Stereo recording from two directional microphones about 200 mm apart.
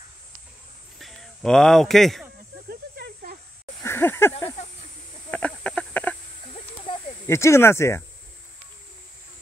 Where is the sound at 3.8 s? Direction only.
10° left (ahead or behind).